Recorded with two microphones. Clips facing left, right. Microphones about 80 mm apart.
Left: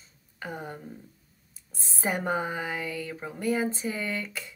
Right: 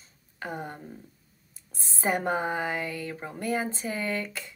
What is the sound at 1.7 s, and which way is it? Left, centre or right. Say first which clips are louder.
Speech: right 2 dB; centre.